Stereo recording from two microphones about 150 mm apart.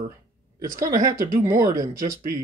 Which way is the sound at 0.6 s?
20° right (ahead or behind).